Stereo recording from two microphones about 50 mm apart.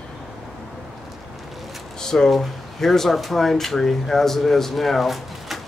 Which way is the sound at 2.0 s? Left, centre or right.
Centre.